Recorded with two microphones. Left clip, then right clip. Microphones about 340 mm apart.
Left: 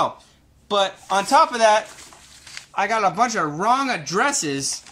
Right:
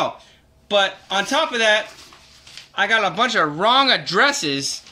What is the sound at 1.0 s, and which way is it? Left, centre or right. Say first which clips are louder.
Speech: left 4 dB; left.